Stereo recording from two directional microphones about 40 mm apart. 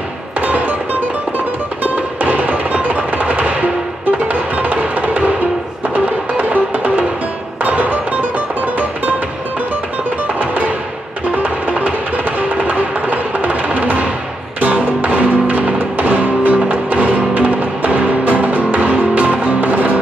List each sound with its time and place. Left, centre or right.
0.4 s music: right
1.8 s music: right
10.4 s music: right